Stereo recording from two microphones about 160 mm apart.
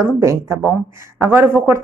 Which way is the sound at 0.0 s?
20° right (ahead or behind).